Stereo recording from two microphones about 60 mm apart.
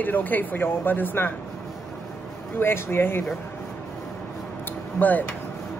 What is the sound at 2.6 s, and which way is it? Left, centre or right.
Speech, left.